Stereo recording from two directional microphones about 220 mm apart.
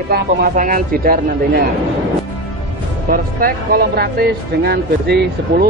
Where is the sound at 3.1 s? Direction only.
40° right (ahead or behind).